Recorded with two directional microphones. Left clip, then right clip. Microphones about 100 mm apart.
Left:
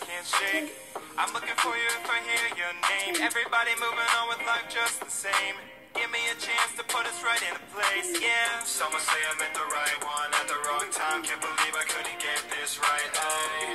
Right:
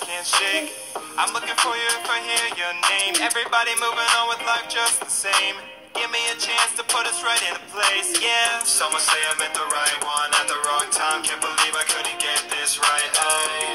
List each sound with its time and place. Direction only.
0.3 s music: 35° right (ahead or behind)